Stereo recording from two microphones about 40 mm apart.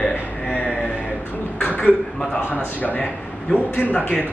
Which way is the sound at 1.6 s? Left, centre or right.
Left.